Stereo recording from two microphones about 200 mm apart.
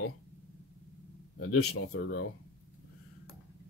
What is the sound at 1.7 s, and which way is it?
Speech, 60° left (ahead or behind).